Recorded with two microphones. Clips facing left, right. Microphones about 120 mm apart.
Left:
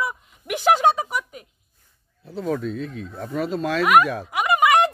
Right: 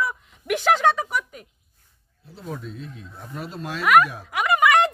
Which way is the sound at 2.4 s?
90° left.